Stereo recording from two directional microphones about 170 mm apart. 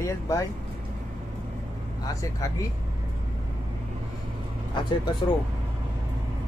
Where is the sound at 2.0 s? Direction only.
20° left (ahead or behind).